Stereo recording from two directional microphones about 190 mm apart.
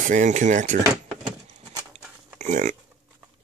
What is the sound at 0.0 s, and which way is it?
Speech, 40° right (ahead or behind).